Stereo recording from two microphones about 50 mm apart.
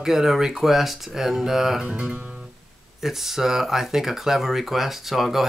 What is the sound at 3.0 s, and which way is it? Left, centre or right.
Speech, centre.